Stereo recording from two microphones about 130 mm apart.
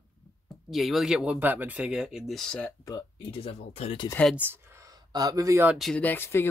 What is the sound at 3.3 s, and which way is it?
Speech, 50° left (ahead or behind).